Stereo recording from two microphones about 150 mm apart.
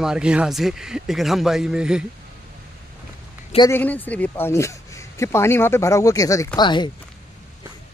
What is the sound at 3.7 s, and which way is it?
Speech, 10° left (ahead or behind).